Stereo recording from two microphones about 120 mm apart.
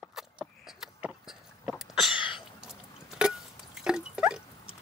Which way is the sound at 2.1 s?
45° left (ahead or behind).